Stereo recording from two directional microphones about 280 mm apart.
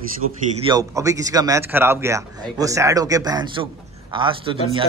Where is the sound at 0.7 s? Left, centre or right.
Centre.